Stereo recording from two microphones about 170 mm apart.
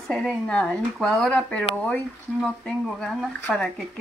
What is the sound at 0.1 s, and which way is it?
Speech, centre (ahead or behind).